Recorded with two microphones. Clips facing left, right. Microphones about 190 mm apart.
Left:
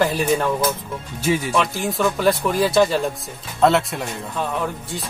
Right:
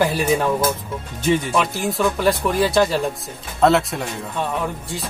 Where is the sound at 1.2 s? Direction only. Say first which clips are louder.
Right 1 dB; 10° left (ahead or behind).